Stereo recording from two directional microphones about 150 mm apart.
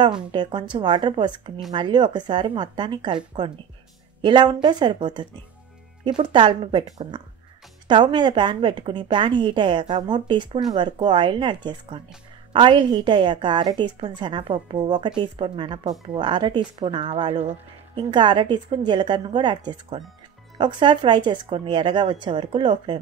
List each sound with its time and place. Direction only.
0.3 s a woman's voice: 30° right (ahead or behind)
7.9 s a woman's voice: 30° right (ahead or behind)
17.9 s a woman's voice: 30° right (ahead or behind)